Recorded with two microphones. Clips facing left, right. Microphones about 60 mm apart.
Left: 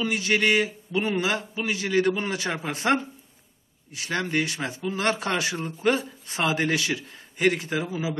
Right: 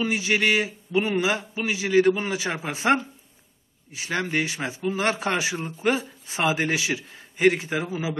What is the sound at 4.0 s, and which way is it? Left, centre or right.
A man's voice, centre.